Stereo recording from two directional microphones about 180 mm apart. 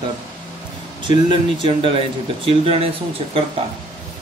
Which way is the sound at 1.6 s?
30° right (ahead or behind).